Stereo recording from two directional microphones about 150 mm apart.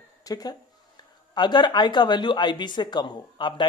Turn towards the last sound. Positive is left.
turn(degrees=30)  # may be behind; listen again after turning